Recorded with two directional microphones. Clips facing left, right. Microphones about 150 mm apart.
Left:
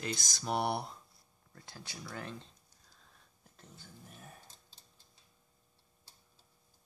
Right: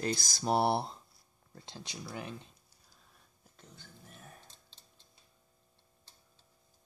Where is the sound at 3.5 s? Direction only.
5° left (ahead or behind).